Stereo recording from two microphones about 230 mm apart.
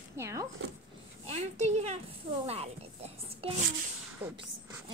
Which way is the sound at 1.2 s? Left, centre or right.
Right.